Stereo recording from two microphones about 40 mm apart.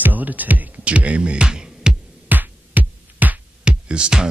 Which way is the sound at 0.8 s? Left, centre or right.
Right.